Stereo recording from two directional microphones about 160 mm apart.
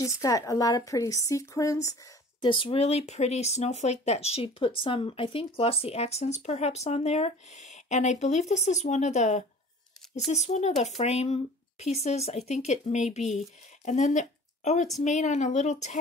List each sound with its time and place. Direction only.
0.0 s a woman's voice: 20° left (ahead or behind)
2.4 s speech: 30° left (ahead or behind); by 16.0 s 45° left (ahead or behind)